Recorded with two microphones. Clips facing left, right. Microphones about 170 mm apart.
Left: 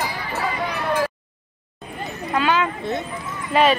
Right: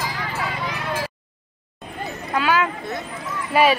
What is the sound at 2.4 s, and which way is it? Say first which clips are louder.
Speech: even; 5° right (ahead or behind).